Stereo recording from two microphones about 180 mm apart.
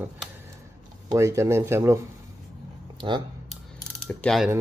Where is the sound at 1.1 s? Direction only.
15° right (ahead or behind).